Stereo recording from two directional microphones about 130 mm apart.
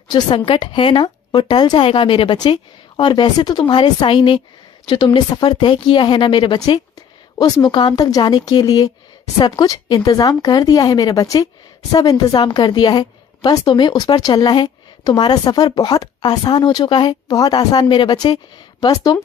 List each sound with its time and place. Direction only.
0.5 s a woman's voice: 40° left (ahead or behind)